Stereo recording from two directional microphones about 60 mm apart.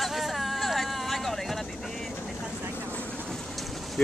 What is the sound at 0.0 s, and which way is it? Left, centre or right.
Vehicle, centre.